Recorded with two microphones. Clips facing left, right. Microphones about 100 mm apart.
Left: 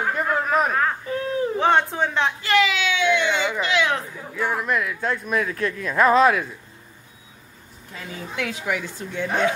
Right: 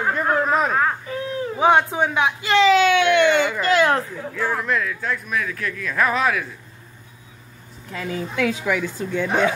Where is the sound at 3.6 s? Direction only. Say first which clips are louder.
Right 5 dB; 45° right (ahead or behind).